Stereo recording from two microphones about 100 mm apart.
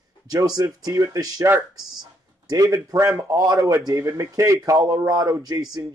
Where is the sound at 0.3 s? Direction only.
40° right (ahead or behind).